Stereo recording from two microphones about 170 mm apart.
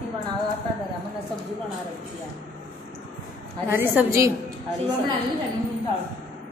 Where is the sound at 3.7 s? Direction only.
10° right (ahead or behind).